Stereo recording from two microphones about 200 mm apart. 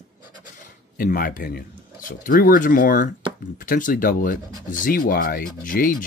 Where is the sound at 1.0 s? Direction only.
45° left (ahead or behind).